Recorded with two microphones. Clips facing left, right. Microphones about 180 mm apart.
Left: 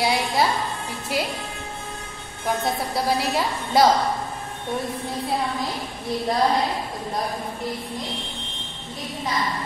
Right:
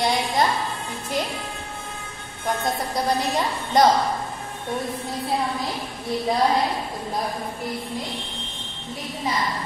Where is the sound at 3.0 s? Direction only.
5° left (ahead or behind).